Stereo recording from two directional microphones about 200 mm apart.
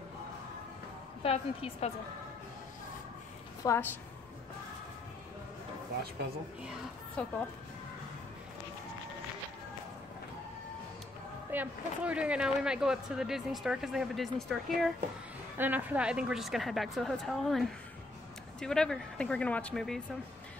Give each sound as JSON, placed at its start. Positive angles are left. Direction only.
{"t": 1.2, "sound": "a woman's voice", "side_deg": 30}
{"t": 3.6, "sound": "a woman's voice", "side_deg": 15}
{"t": 7.2, "sound": "a woman's voice", "side_deg": 5}
{"t": 11.5, "sound": "speech", "side_deg": -10}